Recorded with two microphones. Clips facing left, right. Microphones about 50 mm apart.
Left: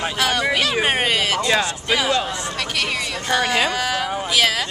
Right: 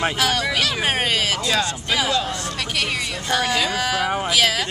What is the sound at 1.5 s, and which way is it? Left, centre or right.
Speech, centre.